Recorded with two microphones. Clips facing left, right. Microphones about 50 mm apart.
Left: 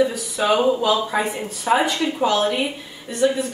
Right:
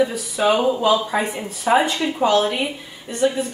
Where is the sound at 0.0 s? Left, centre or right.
Centre.